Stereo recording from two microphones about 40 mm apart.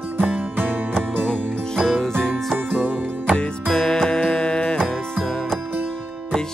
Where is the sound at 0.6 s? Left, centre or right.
Right.